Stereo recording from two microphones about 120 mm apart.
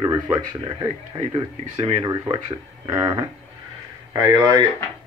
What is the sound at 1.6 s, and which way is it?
Speech, 60° right (ahead or behind).